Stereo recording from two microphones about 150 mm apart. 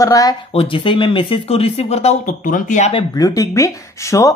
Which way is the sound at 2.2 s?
60° left (ahead or behind).